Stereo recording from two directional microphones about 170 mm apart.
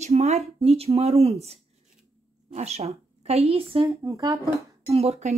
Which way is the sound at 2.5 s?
40° right (ahead or behind).